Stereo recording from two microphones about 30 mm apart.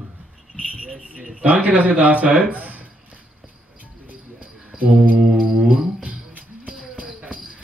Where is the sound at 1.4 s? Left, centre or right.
Right.